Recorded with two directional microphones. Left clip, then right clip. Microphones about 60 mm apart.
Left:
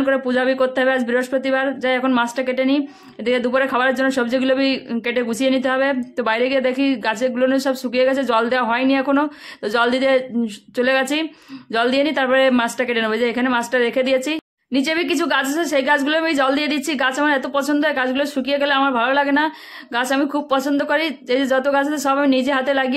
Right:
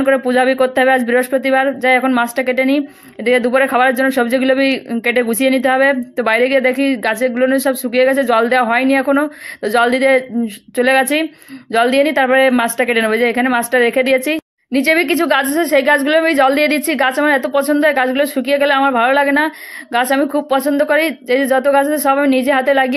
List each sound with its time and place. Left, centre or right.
0.0 s a woman's voice: right
14.7 s a woman's voice: right